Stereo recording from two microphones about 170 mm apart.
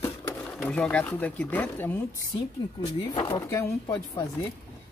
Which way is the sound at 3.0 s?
30° left (ahead or behind).